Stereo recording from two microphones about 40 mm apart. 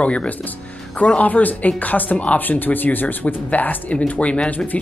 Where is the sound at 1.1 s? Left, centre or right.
Left.